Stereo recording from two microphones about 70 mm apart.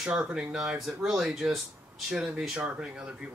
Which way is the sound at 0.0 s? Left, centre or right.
Centre.